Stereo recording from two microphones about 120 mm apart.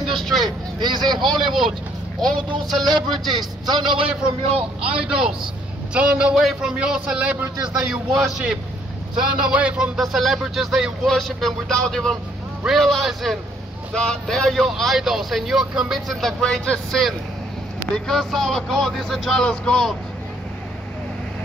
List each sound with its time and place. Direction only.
0.1 s vehicle: centre (ahead or behind)
0.7 s speech: 40° right (ahead or behind)
2.6 s speech: centre (ahead or behind)
3.6 s a man's voice: 40° right (ahead or behind)
4.6 s speech: 10° right (ahead or behind)